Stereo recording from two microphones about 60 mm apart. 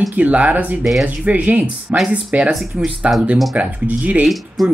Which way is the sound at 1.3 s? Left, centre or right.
Right.